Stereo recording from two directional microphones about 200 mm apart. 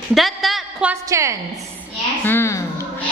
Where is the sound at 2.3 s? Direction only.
10° left (ahead or behind).